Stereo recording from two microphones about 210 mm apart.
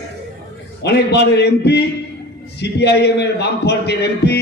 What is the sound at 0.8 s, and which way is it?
A man's voice, 55° left (ahead or behind).